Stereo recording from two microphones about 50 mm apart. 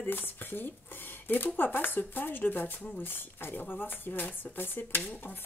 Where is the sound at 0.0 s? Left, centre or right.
Left.